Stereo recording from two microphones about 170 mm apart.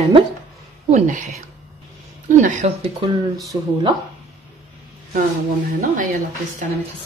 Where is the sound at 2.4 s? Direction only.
45° right (ahead or behind).